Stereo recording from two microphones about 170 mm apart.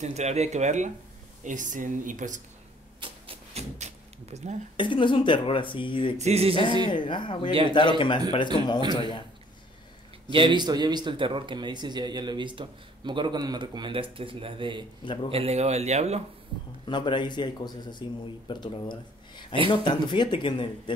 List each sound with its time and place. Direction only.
0.0 s speech: 40° right (ahead or behind)
3.0 s a sound: 35° right (ahead or behind)
4.7 s speech: 30° left (ahead or behind)
6.1 s speech: 40° right (ahead or behind)
6.9 s speech: 30° left (ahead or behind)
10.3 s speech: 30° right (ahead or behind)
16.8 s speech: 25° left (ahead or behind)